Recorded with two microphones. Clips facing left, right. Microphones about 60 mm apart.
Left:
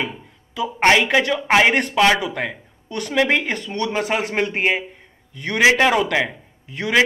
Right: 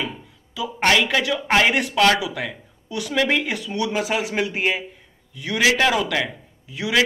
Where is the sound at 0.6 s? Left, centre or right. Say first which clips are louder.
Left 3 dB; left.